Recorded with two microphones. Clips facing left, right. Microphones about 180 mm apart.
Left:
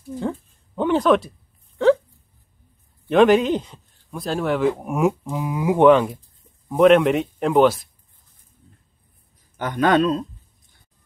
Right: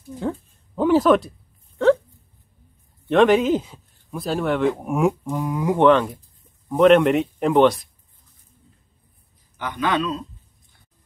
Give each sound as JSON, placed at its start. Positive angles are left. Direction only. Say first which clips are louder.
{"t": 0.2, "sound": "a sound", "louder": "right 1 dB", "side_deg": 0}
{"t": 3.1, "sound": "speech", "louder": "left 1 dB", "side_deg": 0}
{"t": 9.6, "sound": "a man's voice", "louder": "left 5 dB", "side_deg": 45}